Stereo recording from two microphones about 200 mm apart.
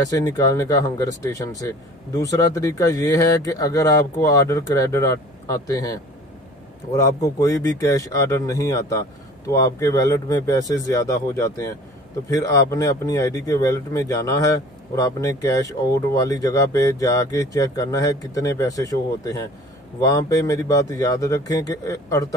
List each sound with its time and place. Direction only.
0.0 s speech: 15° left (ahead or behind)